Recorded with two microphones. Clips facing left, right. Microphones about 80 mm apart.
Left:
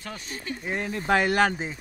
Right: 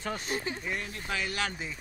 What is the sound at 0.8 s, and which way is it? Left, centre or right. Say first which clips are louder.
Speech: left 12 dB; left.